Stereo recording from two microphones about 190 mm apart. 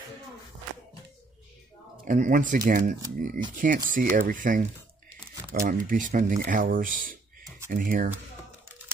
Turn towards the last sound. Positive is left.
turn(degrees=-45)  # may be behind; listen again after turning